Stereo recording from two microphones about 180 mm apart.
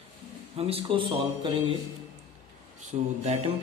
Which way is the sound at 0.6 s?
30° right (ahead or behind).